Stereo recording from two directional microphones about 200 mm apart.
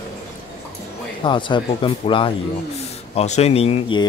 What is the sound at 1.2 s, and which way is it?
Speech, 25° left (ahead or behind).